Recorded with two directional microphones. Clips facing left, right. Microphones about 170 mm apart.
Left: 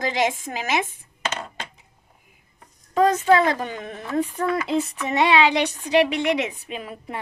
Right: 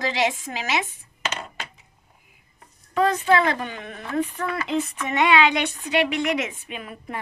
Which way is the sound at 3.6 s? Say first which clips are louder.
Left 2 dB; 35° left (ahead or behind).